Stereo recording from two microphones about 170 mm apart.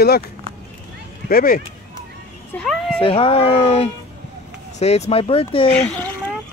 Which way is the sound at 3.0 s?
30° left (ahead or behind).